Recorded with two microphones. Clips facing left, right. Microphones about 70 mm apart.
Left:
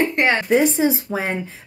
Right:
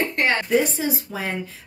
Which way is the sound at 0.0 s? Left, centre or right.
Left.